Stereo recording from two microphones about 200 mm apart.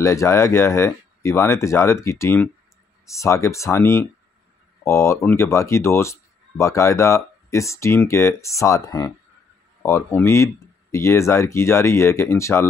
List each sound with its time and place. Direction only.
0.0 s speech: 15° left (ahead or behind)